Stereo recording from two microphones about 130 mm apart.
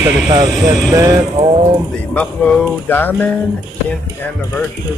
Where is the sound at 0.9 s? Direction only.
25° right (ahead or behind).